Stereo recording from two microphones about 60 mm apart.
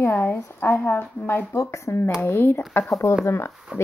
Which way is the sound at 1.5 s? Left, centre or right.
Left.